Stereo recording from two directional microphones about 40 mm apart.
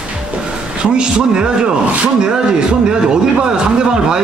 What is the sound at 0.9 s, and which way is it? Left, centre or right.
A man's voice, right.